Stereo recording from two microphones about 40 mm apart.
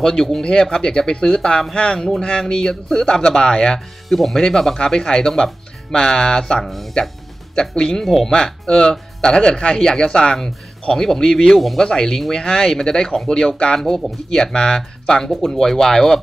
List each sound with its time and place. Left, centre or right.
0.0 s speech: centre
0.4 s a man's voice: left
2.2 s a man's voice: left
4.1 s a man's voice: centre; by 6.4 s left
6.6 s speech: centre
7.7 s a man's voice: left
8.0 s speech: centre
8.5 s a man's voice: left
11.5 s speech: centre
11.8 s a man's voice: centre
13.7 s speech: centre